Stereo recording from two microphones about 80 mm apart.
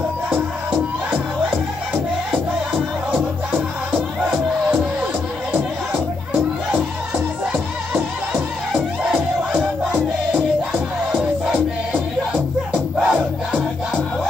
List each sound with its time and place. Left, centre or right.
0.3 s music: centre
8.7 s music: centre
10.3 s music: centre